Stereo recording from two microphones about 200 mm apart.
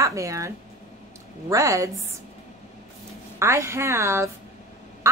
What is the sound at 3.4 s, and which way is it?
Speech, 15° right (ahead or behind).